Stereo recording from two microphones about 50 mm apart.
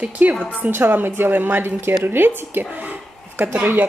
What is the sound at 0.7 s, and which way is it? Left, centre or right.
Speech, right.